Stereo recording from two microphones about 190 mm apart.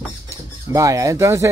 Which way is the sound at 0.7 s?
15° right (ahead or behind).